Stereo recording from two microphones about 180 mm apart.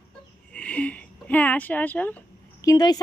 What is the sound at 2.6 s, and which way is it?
Speech, 20° left (ahead or behind).